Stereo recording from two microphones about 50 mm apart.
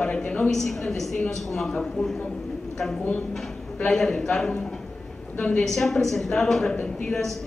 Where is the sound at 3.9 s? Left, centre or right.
Centre.